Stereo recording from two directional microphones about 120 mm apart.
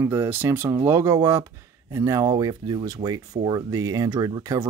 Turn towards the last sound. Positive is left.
turn(degrees=-25)  # may be behind; listen again after turning